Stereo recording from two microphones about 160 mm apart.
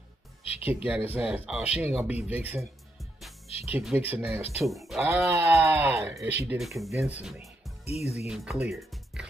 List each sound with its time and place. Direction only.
0.4 s music: 35° left (ahead or behind)
0.8 s speech: 10° right (ahead or behind)
3.0 s music: centre (ahead or behind)
3.4 s speech: 40° left (ahead or behind)
3.7 s speech: 10° right (ahead or behind)
4.6 s speech: centre (ahead or behind)
5.0 s speech: 15° right (ahead or behind)
7.8 s speech: 40° left (ahead or behind)
8.3 s speech: 5° right (ahead or behind)